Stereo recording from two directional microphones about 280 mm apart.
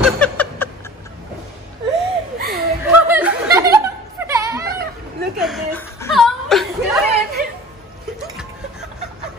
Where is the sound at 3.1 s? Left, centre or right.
Centre.